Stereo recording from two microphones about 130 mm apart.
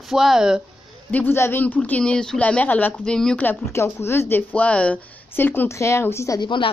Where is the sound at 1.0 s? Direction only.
15° left (ahead or behind).